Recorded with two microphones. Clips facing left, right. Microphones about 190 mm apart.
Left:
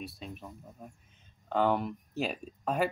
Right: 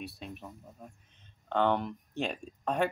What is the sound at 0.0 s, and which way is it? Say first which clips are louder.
Speech: even; centre (ahead or behind).